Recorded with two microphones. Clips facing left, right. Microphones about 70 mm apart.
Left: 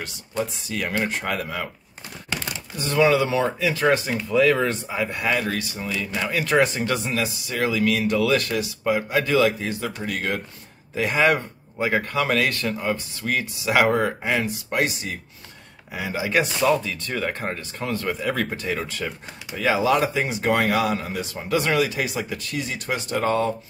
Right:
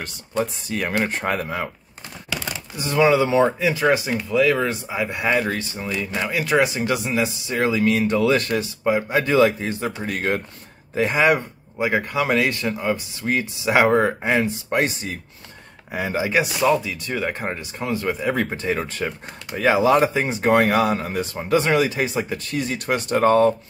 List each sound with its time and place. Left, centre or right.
0.0 s speech: right
2.9 s speech: centre
3.8 s speech: centre; by 5.8 s right
5.9 s speech: centre
7.4 s speech: right
11.1 s speech: centre; by 16.3 s right
16.3 s speech: centre
18.6 s speech: right
21.4 s speech: right